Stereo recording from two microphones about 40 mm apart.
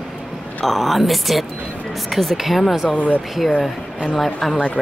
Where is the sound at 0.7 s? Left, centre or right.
Centre.